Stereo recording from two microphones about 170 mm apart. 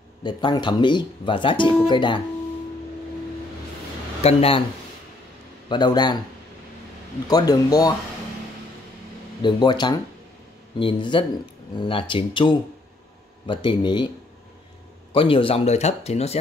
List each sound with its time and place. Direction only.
0.2 s speech: 25° left (ahead or behind)
4.2 s speech: 35° left (ahead or behind)
5.7 s speech: 25° left (ahead or behind)
7.2 s speech: 20° left (ahead or behind)
9.4 s speech: 25° left (ahead or behind)
15.1 s speech: 30° left (ahead or behind)